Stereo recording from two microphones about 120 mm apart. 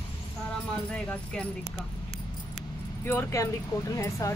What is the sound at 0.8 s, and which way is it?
Speech, 10° left (ahead or behind).